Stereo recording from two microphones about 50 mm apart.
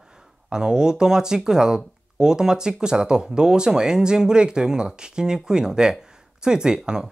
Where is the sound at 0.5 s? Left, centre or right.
Centre.